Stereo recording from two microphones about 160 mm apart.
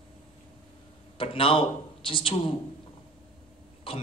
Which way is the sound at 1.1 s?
35° left (ahead or behind).